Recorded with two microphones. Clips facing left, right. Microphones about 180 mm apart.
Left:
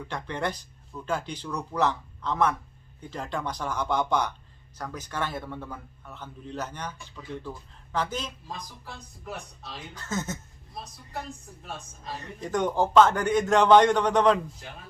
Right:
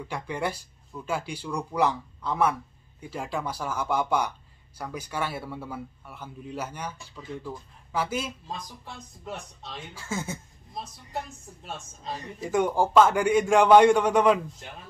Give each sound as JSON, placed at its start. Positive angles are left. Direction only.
{"t": 0.1, "sound": "speech", "side_deg": -10}
{"t": 9.9, "sound": "speech", "side_deg": -10}
{"t": 11.6, "sound": "speech", "side_deg": -25}
{"t": 12.4, "sound": "speech", "side_deg": -10}